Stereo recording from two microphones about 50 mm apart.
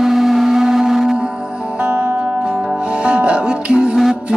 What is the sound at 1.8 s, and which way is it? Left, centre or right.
Music, right.